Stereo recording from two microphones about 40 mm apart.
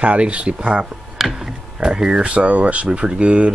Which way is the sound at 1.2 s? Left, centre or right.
Centre.